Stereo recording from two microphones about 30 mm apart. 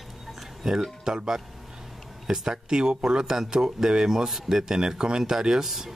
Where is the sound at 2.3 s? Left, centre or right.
Centre.